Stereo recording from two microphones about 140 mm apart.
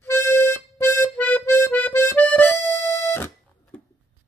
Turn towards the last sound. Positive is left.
turn(degrees=20)  # may be behind; listen again after turning